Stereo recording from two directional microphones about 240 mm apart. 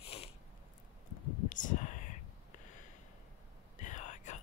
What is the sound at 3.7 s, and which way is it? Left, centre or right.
Whispering, left.